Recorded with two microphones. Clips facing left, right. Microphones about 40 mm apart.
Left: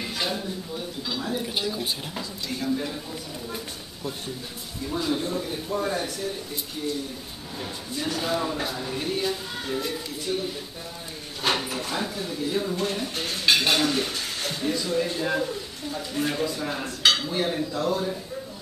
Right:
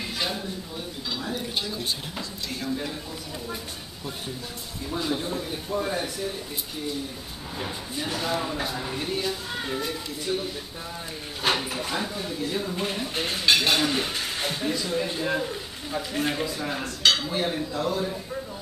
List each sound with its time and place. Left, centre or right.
0.0 s speech: centre
4.8 s speech: centre
7.5 s speech: centre
11.4 s speech: centre
12.7 s speech: centre
13.5 s speech: centre
13.8 s speech: centre
15.5 s speech: centre
16.4 s speech: centre